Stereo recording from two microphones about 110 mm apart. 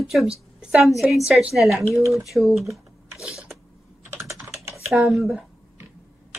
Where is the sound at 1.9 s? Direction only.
25° right (ahead or behind).